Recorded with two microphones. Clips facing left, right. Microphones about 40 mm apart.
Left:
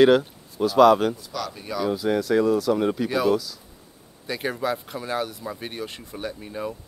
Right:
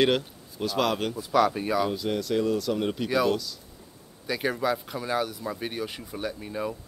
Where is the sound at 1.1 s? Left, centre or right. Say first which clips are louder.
Right 9 dB; right.